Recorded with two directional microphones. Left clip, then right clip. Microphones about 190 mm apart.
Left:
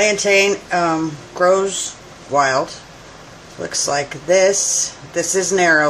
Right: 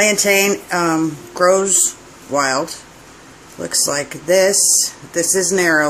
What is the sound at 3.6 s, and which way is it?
Speech, 35° right (ahead or behind).